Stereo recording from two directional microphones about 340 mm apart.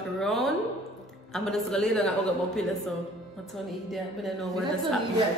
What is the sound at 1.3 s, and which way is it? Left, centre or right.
A man's voice, centre.